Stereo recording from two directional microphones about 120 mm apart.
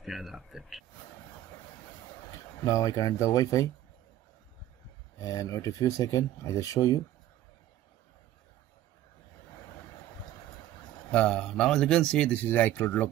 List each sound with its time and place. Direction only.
0.0 s speech: centre (ahead or behind)
2.6 s speech: 30° left (ahead or behind)
5.2 s speech: 30° left (ahead or behind)
11.1 s speech: 10° left (ahead or behind)